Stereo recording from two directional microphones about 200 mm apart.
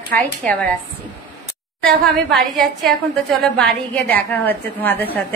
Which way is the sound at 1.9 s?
Centre (ahead or behind).